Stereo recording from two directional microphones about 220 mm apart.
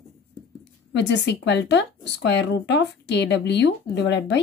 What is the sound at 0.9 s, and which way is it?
A woman's voice, 50° left (ahead or behind).